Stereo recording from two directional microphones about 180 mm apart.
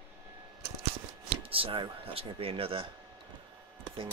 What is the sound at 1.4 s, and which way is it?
Speech, 30° right (ahead or behind).